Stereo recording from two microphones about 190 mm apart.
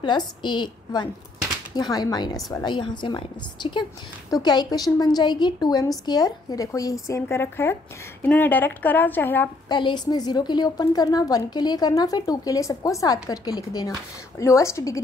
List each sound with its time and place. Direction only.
0.0 s a woman's voice: 25° left (ahead or behind)
9.7 s a woman's voice: 25° left (ahead or behind)